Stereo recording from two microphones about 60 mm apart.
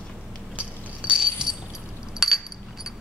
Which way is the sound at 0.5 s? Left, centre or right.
Right.